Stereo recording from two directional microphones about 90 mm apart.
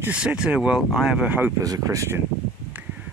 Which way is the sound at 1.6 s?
40° right (ahead or behind).